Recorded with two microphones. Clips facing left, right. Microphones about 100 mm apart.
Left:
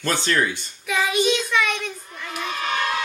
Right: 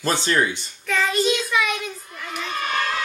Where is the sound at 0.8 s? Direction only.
10° left (ahead or behind).